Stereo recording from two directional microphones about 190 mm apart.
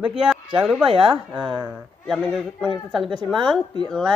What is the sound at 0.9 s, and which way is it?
Speech, 30° right (ahead or behind).